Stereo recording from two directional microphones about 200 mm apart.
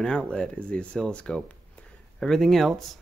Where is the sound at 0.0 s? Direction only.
5° left (ahead or behind).